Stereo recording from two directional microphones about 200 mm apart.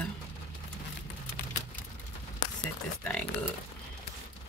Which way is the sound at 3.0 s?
5° left (ahead or behind).